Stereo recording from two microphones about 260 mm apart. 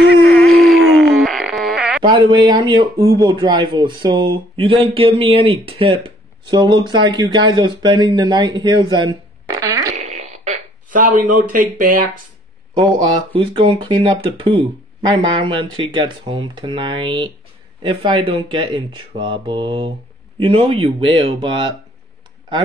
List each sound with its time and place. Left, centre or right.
0.3 s a sound: centre
2.1 s speech: centre
9.6 s fart: centre
9.9 s fart: right
11.3 s speech: right
12.7 s speech: centre